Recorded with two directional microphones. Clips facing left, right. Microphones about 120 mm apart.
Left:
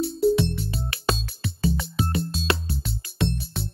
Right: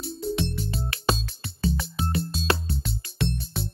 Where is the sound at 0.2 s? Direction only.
5° left (ahead or behind).